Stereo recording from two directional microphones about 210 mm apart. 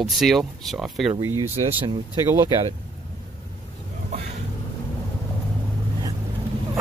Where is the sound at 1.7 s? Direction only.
25° right (ahead or behind).